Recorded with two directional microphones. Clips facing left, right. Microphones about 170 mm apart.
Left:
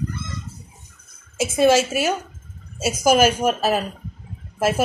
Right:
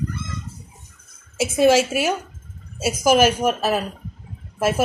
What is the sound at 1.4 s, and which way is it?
Speech, 5° right (ahead or behind).